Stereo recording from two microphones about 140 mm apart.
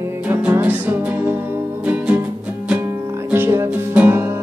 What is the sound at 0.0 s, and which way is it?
Music, 20° right (ahead or behind).